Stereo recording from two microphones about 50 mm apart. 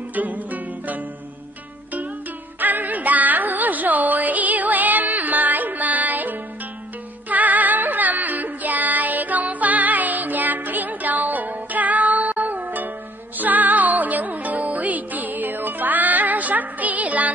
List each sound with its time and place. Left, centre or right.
0.1 s music: right
2.6 s music: right